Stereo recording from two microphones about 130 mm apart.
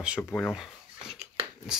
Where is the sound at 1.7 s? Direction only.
5° right (ahead or behind).